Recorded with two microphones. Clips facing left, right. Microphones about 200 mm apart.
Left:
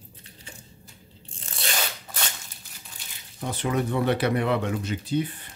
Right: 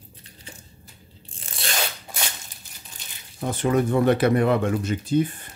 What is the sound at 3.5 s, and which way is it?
Speech, 45° right (ahead or behind).